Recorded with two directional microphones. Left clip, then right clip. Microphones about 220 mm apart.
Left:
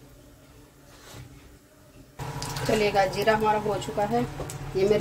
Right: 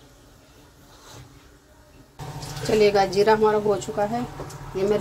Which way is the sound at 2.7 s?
15° right (ahead or behind).